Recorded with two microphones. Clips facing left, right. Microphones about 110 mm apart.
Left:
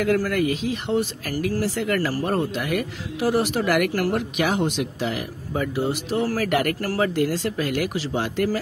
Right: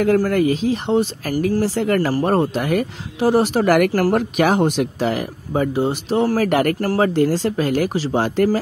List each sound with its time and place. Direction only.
0.0 s speech: 35° right (ahead or behind)
5.5 s speech: 30° right (ahead or behind)